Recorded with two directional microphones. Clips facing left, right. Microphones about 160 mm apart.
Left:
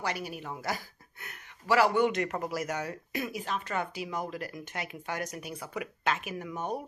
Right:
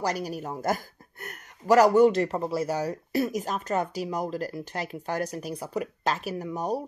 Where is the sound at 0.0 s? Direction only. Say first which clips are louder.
Right 6 dB; 40° right (ahead or behind).